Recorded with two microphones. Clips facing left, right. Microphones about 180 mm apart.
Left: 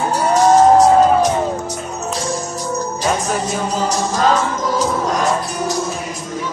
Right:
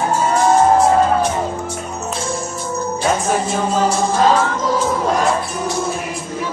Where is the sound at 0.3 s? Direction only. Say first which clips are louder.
Left 4 dB; 40° left (ahead or behind).